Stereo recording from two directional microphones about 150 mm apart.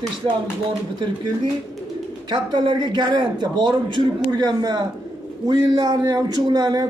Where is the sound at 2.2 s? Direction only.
30° right (ahead or behind).